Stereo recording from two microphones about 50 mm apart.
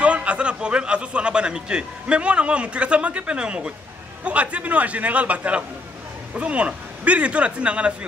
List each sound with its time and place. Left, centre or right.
0.0 s a man's voice: right